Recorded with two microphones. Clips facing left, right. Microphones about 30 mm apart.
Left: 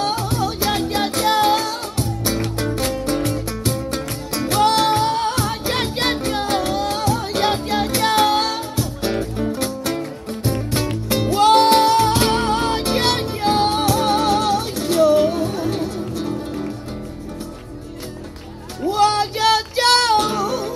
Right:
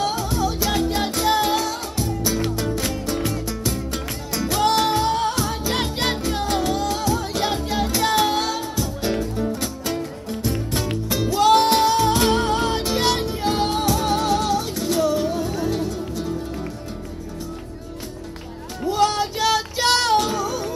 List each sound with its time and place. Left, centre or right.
0.0 s music: left
18.9 s music: left